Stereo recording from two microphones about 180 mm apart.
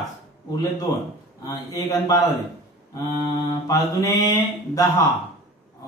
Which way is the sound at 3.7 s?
15° left (ahead or behind).